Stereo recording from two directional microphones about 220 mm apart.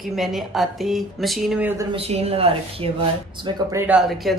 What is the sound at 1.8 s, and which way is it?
A woman's voice, 25° right (ahead or behind).